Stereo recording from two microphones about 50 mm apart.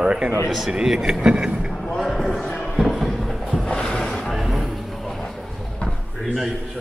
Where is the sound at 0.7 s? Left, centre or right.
Centre.